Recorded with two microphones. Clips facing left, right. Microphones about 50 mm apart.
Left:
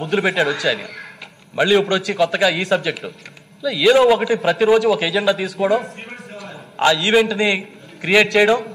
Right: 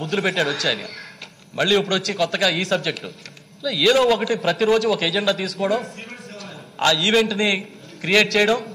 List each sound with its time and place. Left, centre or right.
0.0 s a man's voice: centre